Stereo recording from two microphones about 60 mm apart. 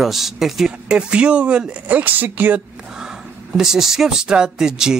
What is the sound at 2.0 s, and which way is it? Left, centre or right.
Speech, right.